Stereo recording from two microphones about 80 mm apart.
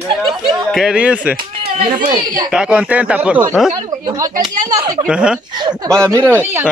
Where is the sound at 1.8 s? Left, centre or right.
Right.